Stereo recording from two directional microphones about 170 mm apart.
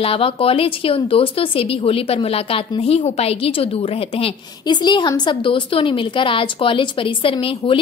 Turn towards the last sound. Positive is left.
turn(degrees=30)  # may be behind; listen again after turning